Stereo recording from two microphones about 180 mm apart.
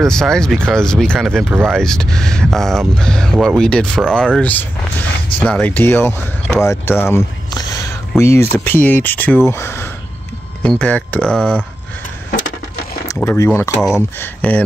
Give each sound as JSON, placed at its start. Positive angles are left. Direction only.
{"t": 0.0, "sound": "speech", "side_deg": 5}
{"t": 12.3, "sound": "a sound", "side_deg": 90}
{"t": 13.1, "sound": "speech", "side_deg": 15}